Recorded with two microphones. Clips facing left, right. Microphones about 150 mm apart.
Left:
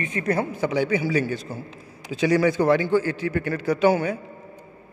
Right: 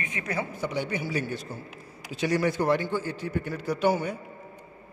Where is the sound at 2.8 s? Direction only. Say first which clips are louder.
Left 8 dB; 90° left.